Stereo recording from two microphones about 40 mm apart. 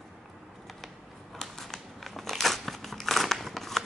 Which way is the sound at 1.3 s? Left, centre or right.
Centre.